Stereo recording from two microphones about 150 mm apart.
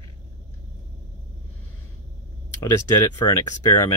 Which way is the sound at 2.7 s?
20° left (ahead or behind).